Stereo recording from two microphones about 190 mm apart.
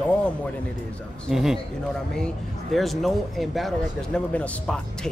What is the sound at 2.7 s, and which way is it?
Speech, centre (ahead or behind).